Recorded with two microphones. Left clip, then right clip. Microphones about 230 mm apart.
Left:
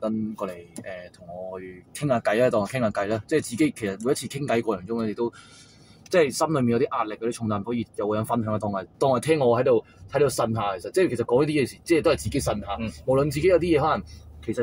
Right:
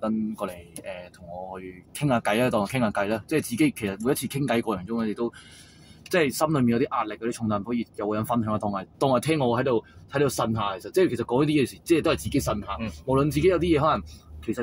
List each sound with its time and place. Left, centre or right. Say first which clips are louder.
2.0 s speech: left 2 dB; centre